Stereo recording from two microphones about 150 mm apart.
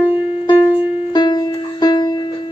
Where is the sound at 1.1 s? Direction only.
30° left (ahead or behind).